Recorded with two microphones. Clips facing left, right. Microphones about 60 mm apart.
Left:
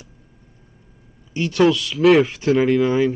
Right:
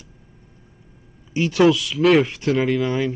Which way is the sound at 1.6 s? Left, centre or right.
Centre.